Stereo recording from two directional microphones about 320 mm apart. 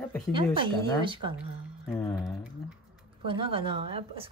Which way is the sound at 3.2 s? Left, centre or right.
Centre.